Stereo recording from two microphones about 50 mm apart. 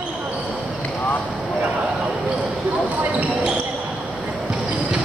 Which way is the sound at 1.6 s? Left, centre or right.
Right.